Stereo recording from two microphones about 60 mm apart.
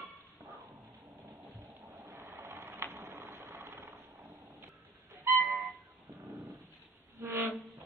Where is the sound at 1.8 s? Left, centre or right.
Right.